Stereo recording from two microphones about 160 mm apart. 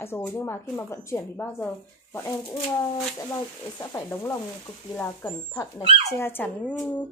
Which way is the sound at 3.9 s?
15° left (ahead or behind).